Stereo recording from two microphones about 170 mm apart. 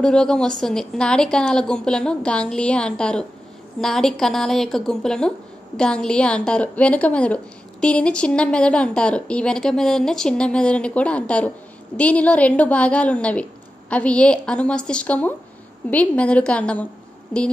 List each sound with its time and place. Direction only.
0.0 s a woman's voice: 5° left (ahead or behind)